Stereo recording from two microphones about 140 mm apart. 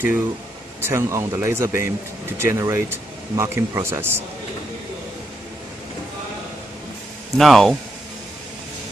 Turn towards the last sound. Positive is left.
turn(degrees=0)  # may be behind; listen again after turning